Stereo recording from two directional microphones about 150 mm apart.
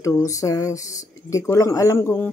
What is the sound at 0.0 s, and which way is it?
A woman's voice, 20° left (ahead or behind).